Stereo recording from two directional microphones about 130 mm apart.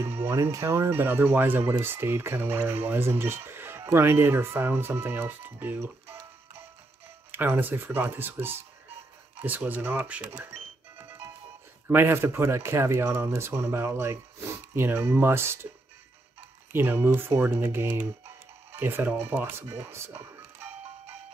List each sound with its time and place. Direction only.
0.0 s speech: 20° right (ahead or behind)
7.2 s speech: 15° right (ahead or behind)
11.9 s speech: 20° right (ahead or behind)
16.7 s speech: 15° right (ahead or behind)